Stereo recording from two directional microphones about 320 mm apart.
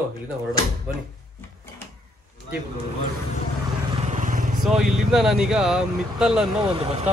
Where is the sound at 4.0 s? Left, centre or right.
Right.